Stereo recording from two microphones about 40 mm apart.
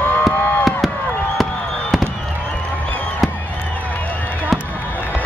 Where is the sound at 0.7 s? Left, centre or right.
Centre.